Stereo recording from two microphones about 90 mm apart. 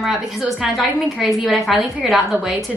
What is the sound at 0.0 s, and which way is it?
A woman's voice, 5° right (ahead or behind).